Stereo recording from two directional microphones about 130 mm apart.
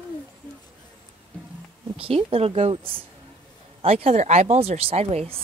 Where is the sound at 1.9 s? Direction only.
45° right (ahead or behind).